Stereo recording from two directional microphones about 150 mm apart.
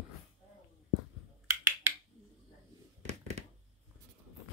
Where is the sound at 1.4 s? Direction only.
10° right (ahead or behind).